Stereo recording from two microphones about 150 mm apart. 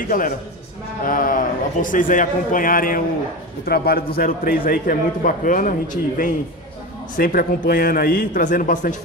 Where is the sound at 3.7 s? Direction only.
85° left; by 6.3 s 60° left (ahead or behind).